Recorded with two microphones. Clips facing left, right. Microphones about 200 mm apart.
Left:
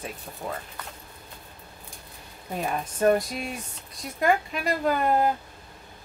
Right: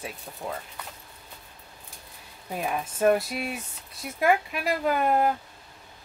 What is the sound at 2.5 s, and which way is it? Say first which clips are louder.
Speech: even; 5° right (ahead or behind).